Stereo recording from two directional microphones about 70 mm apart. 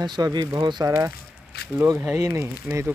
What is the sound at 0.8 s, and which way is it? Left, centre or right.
Speech, right.